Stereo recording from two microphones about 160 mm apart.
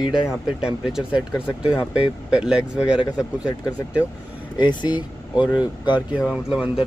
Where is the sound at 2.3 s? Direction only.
5° right (ahead or behind).